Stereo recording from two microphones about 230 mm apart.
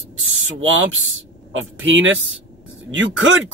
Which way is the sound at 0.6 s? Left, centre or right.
Right.